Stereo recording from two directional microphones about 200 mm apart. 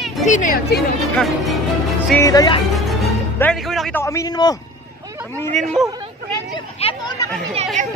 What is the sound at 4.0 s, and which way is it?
Speech, 15° left (ahead or behind).